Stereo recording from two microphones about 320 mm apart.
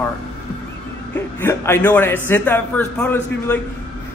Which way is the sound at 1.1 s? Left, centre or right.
Centre.